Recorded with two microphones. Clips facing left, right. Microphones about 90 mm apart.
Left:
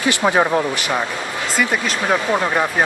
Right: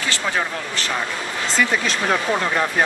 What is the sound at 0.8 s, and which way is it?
Speech, 15° left (ahead or behind).